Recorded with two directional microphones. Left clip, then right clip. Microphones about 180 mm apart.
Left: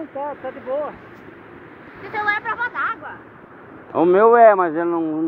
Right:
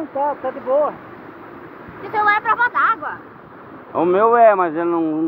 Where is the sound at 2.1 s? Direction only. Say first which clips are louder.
Right 6 dB; 60° right (ahead or behind).